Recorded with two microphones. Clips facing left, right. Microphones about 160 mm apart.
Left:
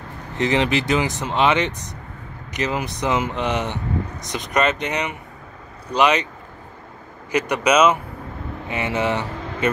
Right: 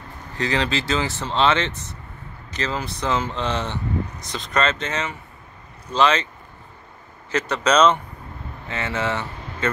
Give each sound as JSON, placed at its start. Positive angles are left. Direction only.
{"t": 0.4, "sound": "speech", "side_deg": 20}
{"t": 7.2, "sound": "speech", "side_deg": 15}